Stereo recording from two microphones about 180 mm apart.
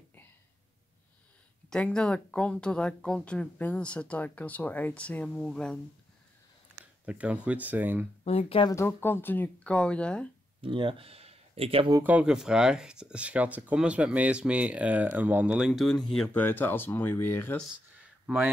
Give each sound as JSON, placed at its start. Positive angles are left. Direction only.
{"t": 1.7, "sound": "speech", "side_deg": 5}
{"t": 6.7, "sound": "speech", "side_deg": -5}
{"t": 8.2, "sound": "speech", "side_deg": 35}
{"t": 8.7, "sound": "speech", "side_deg": 15}
{"t": 10.6, "sound": "speech", "side_deg": -30}
{"t": 12.0, "sound": "speech", "side_deg": -5}
{"t": 18.2, "sound": "speech", "side_deg": -10}